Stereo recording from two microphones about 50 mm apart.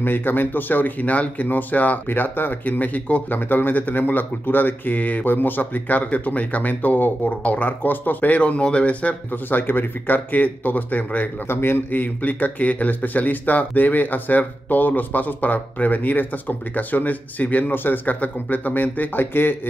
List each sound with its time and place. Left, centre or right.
0.0 s speech: left
8.4 s speech: left
9.3 s speech: left
11.4 s speech: left
17.7 s speech: left